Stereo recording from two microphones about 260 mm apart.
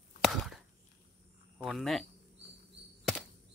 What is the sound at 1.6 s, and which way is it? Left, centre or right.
Speech, centre.